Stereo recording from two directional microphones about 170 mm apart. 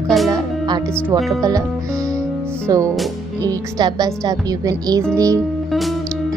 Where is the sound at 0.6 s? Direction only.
25° right (ahead or behind).